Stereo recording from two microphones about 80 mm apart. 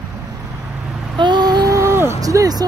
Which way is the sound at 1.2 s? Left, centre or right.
Right.